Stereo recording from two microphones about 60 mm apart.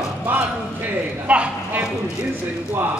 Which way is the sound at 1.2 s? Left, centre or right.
Centre.